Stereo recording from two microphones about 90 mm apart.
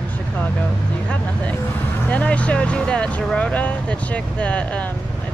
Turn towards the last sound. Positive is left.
turn(degrees=15)  # may be behind; listen again after turning